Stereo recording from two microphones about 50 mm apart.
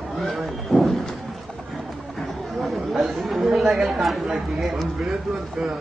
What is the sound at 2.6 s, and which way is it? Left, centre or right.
Chatter, centre.